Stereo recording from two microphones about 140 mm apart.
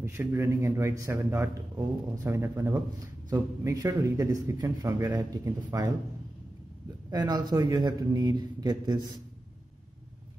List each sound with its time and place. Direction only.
0.0 s a man's voice: 15° right (ahead or behind)
7.1 s a man's voice: 30° right (ahead or behind)